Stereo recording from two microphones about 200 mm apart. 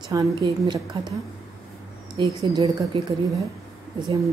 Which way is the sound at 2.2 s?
20° right (ahead or behind).